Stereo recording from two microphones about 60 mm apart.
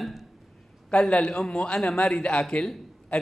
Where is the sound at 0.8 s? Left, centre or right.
Centre.